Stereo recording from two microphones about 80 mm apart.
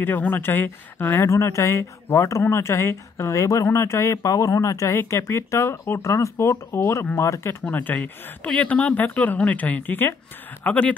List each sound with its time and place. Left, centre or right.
0.0 s speech: left
7.7 s speech: left